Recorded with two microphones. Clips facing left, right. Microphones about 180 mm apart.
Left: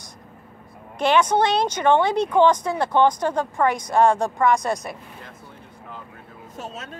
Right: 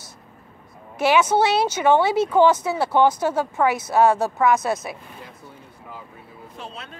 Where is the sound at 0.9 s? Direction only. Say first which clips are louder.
Right 1 dB; 5° right (ahead or behind).